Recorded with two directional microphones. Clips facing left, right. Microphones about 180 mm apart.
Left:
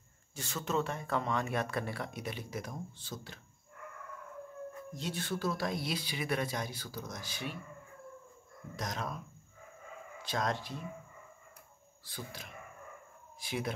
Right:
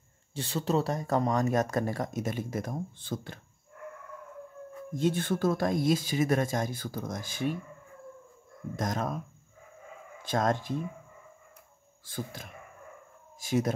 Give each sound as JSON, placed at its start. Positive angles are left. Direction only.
{"t": 0.3, "sound": "speech", "side_deg": -30}
{"t": 4.9, "sound": "speech", "side_deg": -50}
{"t": 8.7, "sound": "speech", "side_deg": -50}
{"t": 10.2, "sound": "speech", "side_deg": -50}
{"t": 12.0, "sound": "speech", "side_deg": -50}